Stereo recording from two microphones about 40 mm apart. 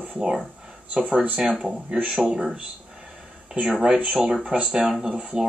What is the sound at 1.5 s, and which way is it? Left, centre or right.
Speech, centre.